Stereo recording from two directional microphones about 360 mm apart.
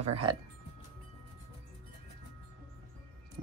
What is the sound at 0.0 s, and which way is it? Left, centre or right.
Speech, centre.